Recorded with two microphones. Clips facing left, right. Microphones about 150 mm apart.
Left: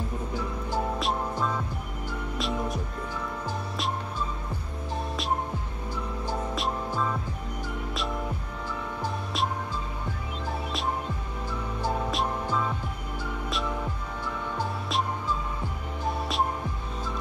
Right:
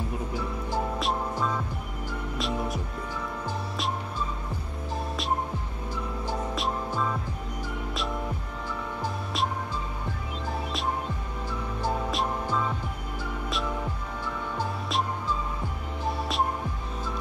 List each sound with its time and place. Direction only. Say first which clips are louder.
0.9 s music: even; centre (ahead or behind)
6.5 s music: even; centre (ahead or behind)
11.8 s music: even; centre (ahead or behind)
16.2 s music: even; centre (ahead or behind)